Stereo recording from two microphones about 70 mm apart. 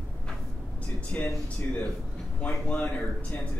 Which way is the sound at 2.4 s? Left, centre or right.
Left.